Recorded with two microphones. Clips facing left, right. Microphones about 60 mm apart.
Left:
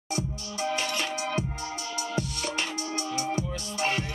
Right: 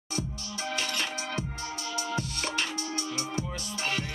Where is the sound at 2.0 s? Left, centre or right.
Right.